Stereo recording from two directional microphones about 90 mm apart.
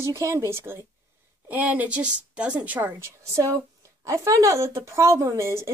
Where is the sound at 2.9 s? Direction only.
30° right (ahead or behind).